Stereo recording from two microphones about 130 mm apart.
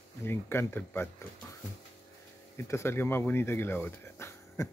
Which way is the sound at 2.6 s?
20° left (ahead or behind).